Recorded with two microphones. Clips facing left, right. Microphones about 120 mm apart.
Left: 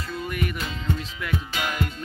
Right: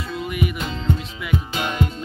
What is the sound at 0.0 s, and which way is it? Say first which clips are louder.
Music: right 4 dB; 5° right (ahead or behind).